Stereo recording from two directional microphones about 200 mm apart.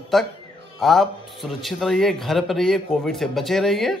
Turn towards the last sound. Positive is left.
turn(degrees=0)  # may be behind; listen again after turning